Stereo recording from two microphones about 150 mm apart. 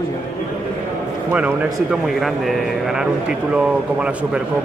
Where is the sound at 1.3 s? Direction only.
10° right (ahead or behind).